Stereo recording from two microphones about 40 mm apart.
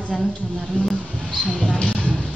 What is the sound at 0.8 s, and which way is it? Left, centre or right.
Speech, left.